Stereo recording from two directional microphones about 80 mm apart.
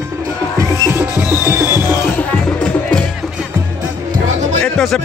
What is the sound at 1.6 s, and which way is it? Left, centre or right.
Music, left.